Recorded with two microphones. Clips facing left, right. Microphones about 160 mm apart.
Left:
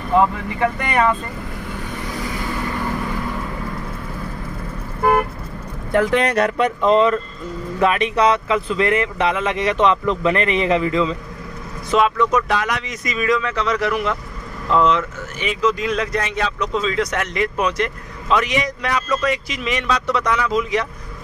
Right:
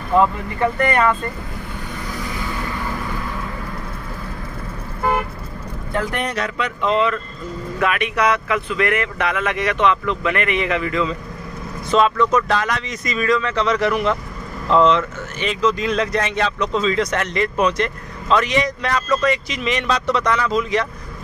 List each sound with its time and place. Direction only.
0.7 s speech: 15° left (ahead or behind)
6.0 s speech: 90° left
6.3 s speech: 50° left (ahead or behind); by 11.1 s 25° left (ahead or behind)
11.9 s speech: 10° left (ahead or behind)